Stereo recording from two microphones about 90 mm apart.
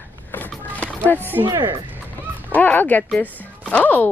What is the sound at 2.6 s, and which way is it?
Speech, 20° left (ahead or behind).